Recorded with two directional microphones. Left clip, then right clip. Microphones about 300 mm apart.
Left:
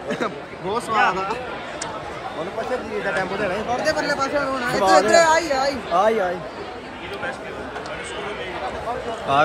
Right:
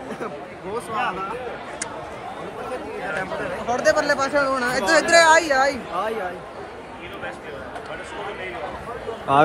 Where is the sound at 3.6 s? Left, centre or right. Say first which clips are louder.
Right 6 dB; right.